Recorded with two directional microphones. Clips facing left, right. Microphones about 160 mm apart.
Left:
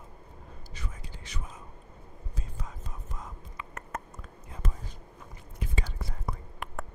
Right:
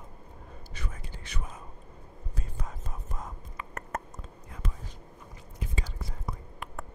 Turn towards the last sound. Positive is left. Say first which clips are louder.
# left 2 dB
turn(degrees=60)  # may be behind; listen again after turning